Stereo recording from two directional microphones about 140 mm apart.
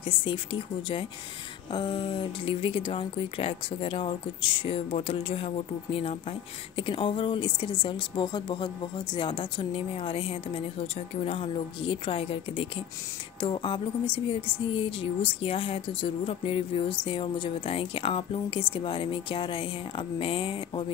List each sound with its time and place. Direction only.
0.0 s speech: 40° left (ahead or behind)
6.8 s speech: 40° left (ahead or behind)